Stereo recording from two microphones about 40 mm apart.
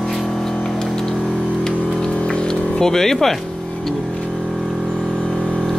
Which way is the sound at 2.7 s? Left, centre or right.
Centre.